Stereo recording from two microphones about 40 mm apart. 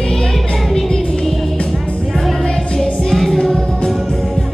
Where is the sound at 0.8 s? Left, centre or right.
Centre.